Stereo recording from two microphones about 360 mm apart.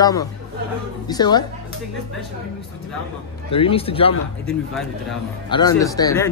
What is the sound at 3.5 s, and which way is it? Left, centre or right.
Speech, centre.